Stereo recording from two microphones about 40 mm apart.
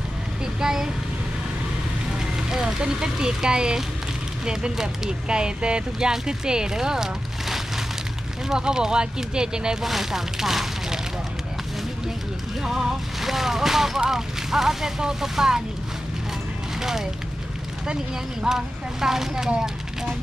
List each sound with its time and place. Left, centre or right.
0.6 s speech: centre
2.1 s speech: centre
9.8 s speech: centre
12.6 s speech: centre
16.8 s speech: centre
18.4 s speech: centre